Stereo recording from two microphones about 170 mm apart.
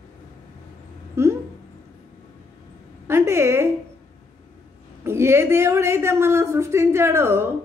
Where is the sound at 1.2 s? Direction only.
15° right (ahead or behind).